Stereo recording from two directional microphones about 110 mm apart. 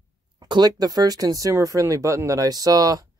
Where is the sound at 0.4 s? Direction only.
40° right (ahead or behind).